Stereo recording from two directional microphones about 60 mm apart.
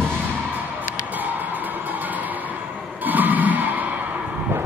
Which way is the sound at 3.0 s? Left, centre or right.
Right.